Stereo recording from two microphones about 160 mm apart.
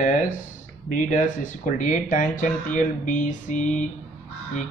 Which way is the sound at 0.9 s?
50° left (ahead or behind).